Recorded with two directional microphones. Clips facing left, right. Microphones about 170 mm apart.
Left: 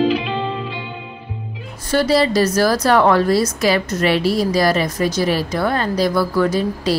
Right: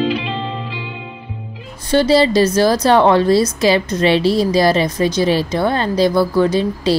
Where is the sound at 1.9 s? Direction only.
25° right (ahead or behind).